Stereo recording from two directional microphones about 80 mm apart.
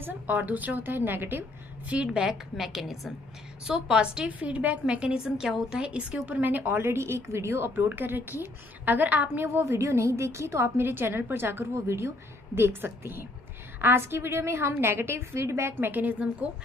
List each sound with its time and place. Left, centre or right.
0.0 s a woman's voice: right
2.0 s a woman's voice: centre
5.8 s a woman's voice: centre
6.8 s a woman's voice: right